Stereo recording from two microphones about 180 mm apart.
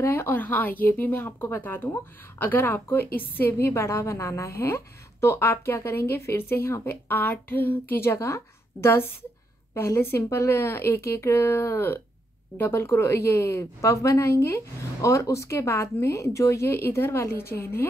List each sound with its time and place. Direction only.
0.0 s a woman's voice: 10° left (ahead or behind)